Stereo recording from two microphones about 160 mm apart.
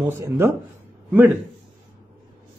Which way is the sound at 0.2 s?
15° right (ahead or behind).